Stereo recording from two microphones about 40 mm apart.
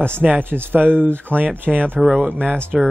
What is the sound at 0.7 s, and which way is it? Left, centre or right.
Speech, right.